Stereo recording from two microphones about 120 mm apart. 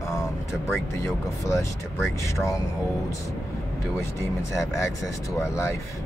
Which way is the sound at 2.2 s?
25° left (ahead or behind).